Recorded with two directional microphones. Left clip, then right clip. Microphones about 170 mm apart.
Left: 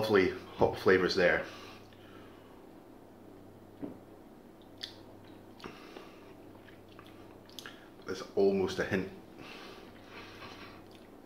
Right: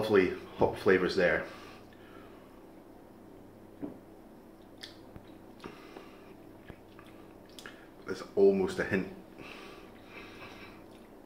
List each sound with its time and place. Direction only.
0.0 s speech: centre (ahead or behind)
3.8 s cupboard open or close: 5° left (ahead or behind)
7.5 s a sound: centre (ahead or behind)